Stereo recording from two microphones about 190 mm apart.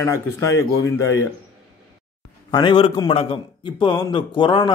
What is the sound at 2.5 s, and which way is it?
Speech, 25° left (ahead or behind).